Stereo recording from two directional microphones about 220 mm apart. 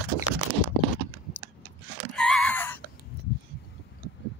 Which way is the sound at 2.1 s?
5° left (ahead or behind).